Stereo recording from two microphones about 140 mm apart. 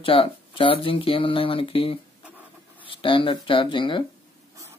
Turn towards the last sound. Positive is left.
turn(degrees=35)  # may be behind; listen again after turning